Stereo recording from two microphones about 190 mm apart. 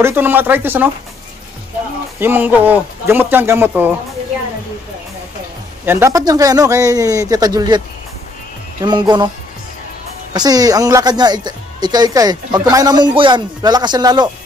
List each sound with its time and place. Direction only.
0.0 s speech: 10° right (ahead or behind)
2.1 s speech: 10° right (ahead or behind)
5.9 s speech: 15° right (ahead or behind)
8.8 s speech: 25° right (ahead or behind)
10.3 s speech: 20° right (ahead or behind)